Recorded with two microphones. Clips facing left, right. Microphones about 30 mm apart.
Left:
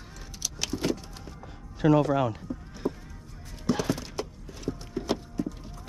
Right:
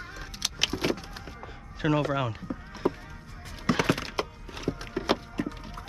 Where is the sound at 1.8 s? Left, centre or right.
Centre.